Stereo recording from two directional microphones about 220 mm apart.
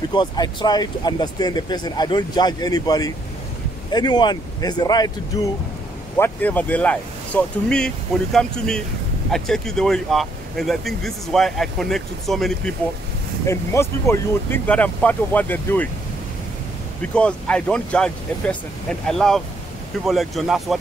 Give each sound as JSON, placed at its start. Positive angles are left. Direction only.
{"t": 0.1, "sound": "speech", "side_deg": 20}
{"t": 13.5, "sound": "speech", "side_deg": 10}
{"t": 17.0, "sound": "speech", "side_deg": 5}